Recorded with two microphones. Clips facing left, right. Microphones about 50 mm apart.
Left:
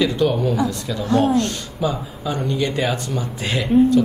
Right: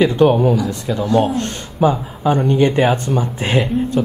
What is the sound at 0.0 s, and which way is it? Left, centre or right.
Speech, right.